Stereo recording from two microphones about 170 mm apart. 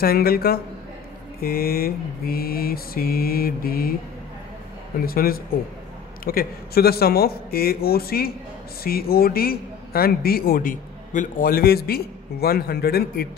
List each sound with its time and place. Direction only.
0.0 s a man's voice: 60° left (ahead or behind)
5.0 s a man's voice: 60° left (ahead or behind)